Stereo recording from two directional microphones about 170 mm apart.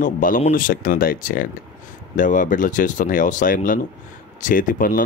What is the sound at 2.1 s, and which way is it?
Speech, 50° left (ahead or behind).